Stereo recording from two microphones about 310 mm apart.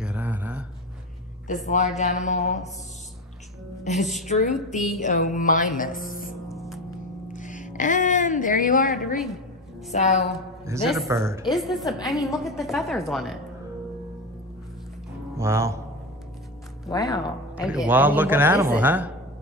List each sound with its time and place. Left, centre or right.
0.0 s a sound: centre
1.5 s mantra: left
3.8 s a woman's voice: left
4.3 s mantra: left
6.5 s gong: centre
7.3 s speech: left
8.8 s a woman's voice: centre
9.9 s mantra: left
10.2 s a woman's voice: centre
15.3 s speech: centre
16.9 s speech: centre
17.6 s a woman's voice: centre